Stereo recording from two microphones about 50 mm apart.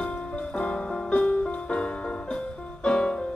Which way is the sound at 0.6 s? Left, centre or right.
Left.